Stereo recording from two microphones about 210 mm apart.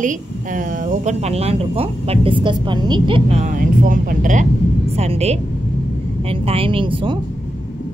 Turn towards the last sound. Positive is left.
turn(degrees=-25)  # may be behind; listen again after turning